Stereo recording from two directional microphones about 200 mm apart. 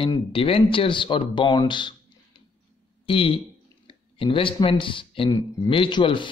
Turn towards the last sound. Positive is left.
turn(degrees=25)  # may be behind; listen again after turning